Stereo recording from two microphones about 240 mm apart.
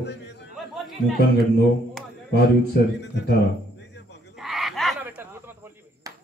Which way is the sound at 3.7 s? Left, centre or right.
Left.